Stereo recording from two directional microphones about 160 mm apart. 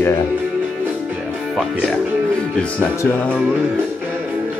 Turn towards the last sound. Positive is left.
turn(degrees=10)  # may be behind; listen again after turning